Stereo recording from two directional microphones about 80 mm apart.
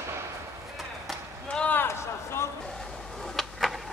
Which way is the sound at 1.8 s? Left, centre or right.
Left.